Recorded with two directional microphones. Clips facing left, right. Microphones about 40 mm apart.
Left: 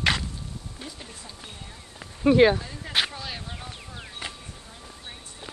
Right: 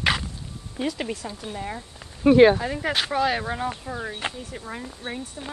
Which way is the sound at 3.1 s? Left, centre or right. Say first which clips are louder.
Right 13 dB; right.